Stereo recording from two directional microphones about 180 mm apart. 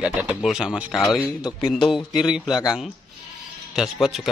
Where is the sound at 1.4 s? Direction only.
25° left (ahead or behind).